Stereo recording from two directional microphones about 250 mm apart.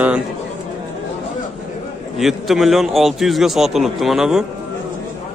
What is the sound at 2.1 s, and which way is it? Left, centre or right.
A man's voice, centre.